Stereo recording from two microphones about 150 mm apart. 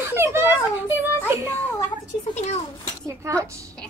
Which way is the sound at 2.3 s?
45° left (ahead or behind).